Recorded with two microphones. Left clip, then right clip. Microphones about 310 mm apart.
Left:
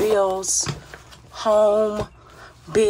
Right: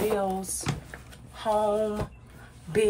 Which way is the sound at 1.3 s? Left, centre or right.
Centre.